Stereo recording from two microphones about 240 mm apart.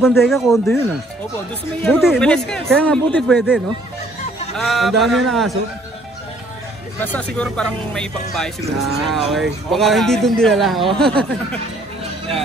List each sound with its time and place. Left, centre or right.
0.2 s speech: centre
1.8 s speech: centre
7.0 s speech: centre